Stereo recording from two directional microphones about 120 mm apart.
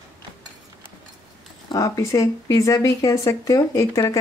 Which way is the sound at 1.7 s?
30° left (ahead or behind).